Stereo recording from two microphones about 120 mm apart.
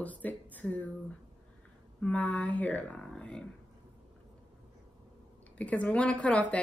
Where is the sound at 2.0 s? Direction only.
10° left (ahead or behind).